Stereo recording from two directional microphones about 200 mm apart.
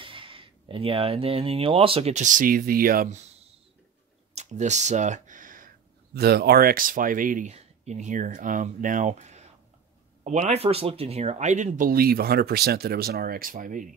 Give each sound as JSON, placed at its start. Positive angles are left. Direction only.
{"t": 0.0, "sound": "speech", "side_deg": -25}
{"t": 4.4, "sound": "speech", "side_deg": -35}
{"t": 6.1, "sound": "speech", "side_deg": -50}